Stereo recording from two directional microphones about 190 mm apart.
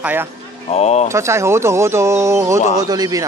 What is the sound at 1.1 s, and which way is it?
A man's voice, 15° right (ahead or behind).